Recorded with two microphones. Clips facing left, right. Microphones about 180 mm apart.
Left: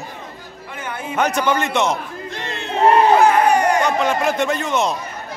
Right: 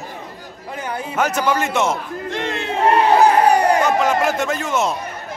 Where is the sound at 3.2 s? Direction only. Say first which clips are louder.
Right 1 dB; 35° right (ahead or behind).